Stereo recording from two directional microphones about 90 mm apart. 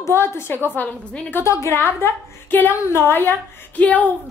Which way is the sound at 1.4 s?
30° left (ahead or behind).